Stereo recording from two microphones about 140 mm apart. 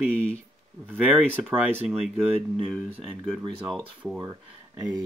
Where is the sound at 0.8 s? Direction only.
15° right (ahead or behind).